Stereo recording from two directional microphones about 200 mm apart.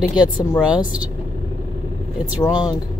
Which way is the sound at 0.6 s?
5° right (ahead or behind).